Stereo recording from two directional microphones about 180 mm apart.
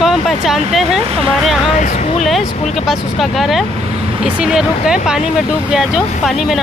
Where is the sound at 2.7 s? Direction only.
Centre (ahead or behind).